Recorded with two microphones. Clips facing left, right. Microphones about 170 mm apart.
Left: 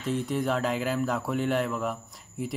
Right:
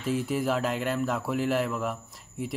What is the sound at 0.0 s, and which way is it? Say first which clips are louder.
Speech: right 1 dB; 5° right (ahead or behind).